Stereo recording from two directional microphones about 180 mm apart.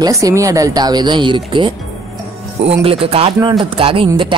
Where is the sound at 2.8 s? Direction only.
30° right (ahead or behind).